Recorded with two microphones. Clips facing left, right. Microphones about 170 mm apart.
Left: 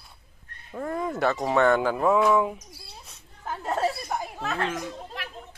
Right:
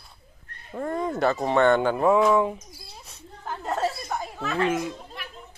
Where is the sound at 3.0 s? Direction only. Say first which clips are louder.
Even; centre (ahead or behind).